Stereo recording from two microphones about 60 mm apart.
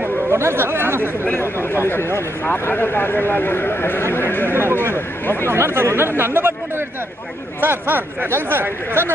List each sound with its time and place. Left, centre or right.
0.3 s chatter: right
1.6 s speech: left
5.5 s speech: right
7.6 s speech: right